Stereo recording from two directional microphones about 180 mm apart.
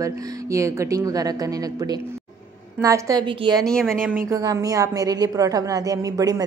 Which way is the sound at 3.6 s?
5° left (ahead or behind).